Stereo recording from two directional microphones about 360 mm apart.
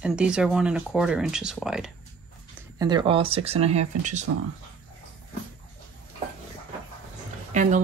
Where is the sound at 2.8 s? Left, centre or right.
Centre.